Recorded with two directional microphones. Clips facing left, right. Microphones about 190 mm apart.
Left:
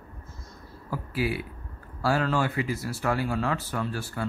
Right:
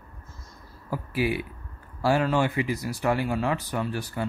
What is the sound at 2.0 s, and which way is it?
Speech, 20° right (ahead or behind).